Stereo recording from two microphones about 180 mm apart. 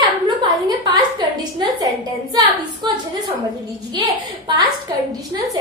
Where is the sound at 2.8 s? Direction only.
25° right (ahead or behind).